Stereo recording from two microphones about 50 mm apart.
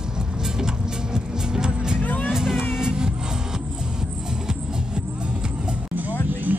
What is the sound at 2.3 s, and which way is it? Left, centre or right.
Music, centre.